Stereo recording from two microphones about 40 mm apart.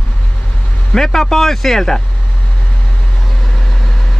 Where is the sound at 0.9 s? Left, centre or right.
Centre.